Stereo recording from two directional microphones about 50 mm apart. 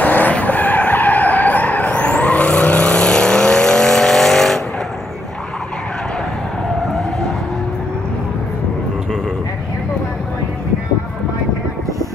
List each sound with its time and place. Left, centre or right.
0.0 s skidding: left; by 4.6 s centre